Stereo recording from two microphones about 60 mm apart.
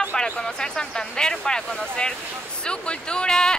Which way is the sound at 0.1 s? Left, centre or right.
Centre.